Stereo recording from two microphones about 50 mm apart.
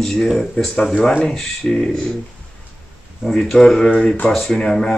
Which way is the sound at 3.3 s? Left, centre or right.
Centre.